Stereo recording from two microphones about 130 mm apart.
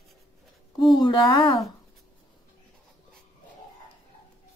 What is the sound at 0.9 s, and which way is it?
Speech, 35° left (ahead or behind).